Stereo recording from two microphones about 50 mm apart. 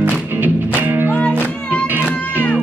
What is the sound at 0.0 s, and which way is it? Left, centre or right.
Music, right.